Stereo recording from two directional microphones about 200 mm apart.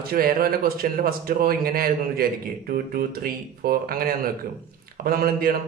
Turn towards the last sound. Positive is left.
turn(degrees=-45)  # may be behind; listen again after turning